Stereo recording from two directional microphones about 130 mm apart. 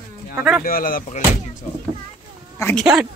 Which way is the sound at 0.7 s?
90° left.